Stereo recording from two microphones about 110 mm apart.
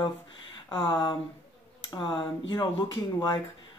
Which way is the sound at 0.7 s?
45° left (ahead or behind).